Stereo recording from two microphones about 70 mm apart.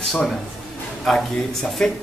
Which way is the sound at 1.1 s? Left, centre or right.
Centre.